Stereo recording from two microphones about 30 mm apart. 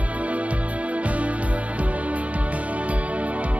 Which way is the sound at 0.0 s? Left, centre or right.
Right.